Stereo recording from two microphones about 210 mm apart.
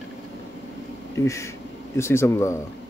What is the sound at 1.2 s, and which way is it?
Speech, 15° left (ahead or behind).